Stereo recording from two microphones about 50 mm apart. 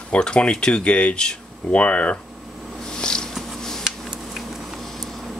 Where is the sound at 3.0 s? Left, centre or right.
Centre.